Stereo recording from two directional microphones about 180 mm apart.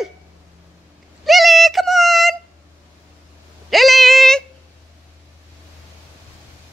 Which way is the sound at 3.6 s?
Centre (ahead or behind).